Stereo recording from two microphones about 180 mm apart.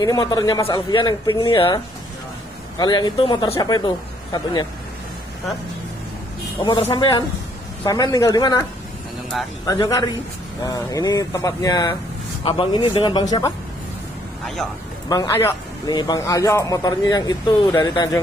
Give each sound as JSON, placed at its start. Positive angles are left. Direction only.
{"t": 0.0, "sound": "speech", "side_deg": 20}
{"t": 2.8, "sound": "speech", "side_deg": 25}
{"t": 6.9, "sound": "speech", "side_deg": 25}
{"t": 9.7, "sound": "speech", "side_deg": 20}
{"t": 14.4, "sound": "speech", "side_deg": 0}
{"t": 15.0, "sound": "speech", "side_deg": 20}